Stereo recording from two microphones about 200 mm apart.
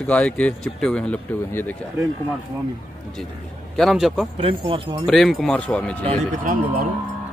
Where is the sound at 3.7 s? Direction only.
Centre (ahead or behind).